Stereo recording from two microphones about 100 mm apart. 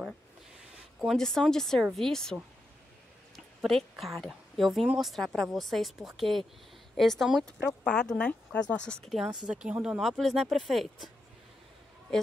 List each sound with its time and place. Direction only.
1.0 s speech: 5° left (ahead or behind)
3.3 s a sound: centre (ahead or behind)
4.2 s speech: centre (ahead or behind)
9.0 s speech: centre (ahead or behind)